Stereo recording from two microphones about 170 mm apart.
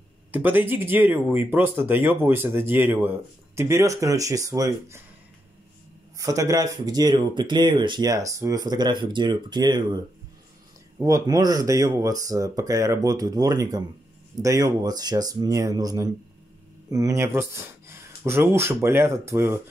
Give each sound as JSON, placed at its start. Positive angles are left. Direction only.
{"t": 0.3, "sound": "speech", "side_deg": -10}
{"t": 6.1, "sound": "speech", "side_deg": -20}
{"t": 11.0, "sound": "speech", "side_deg": -20}